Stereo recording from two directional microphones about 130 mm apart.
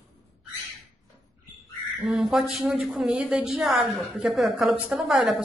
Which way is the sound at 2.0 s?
Centre (ahead or behind).